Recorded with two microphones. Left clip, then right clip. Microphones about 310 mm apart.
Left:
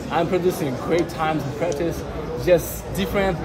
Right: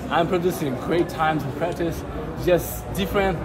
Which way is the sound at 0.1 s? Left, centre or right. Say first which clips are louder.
Even; centre.